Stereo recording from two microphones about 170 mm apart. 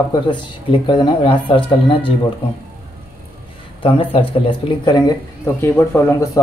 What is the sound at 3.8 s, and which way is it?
Speech, 30° left (ahead or behind).